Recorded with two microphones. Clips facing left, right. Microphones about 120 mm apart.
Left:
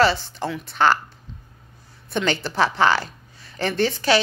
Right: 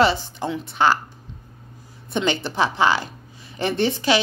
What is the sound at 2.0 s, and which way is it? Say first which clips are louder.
Speech: right 1 dB; 20° right (ahead or behind).